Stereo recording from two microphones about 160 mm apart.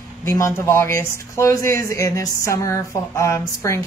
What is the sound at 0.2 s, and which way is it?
Speech, 15° left (ahead or behind).